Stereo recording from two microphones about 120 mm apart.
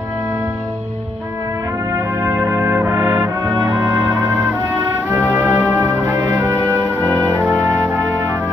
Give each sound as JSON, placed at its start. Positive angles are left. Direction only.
{"t": 2.0, "sound": "brass instrument", "side_deg": -25}
{"t": 3.8, "sound": "music", "side_deg": -20}